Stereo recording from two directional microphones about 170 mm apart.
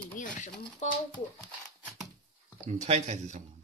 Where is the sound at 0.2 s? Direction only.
45° left (ahead or behind).